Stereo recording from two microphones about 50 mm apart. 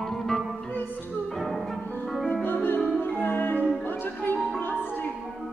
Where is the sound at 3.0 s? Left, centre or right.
Left.